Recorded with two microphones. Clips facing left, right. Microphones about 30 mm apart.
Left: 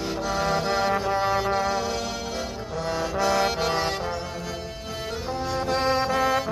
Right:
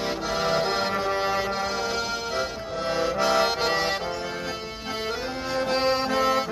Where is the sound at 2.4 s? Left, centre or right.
Right.